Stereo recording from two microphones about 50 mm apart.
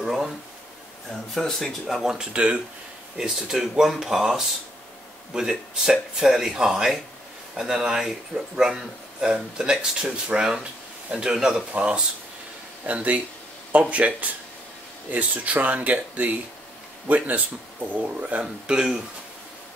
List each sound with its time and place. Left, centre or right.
0.0 s a sound: centre
1.1 s speech: centre
2.1 s speech: centre
11.7 s speech: right
18.4 s speech: centre